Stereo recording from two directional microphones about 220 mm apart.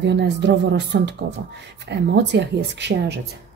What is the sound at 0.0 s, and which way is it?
Speech, 50° right (ahead or behind).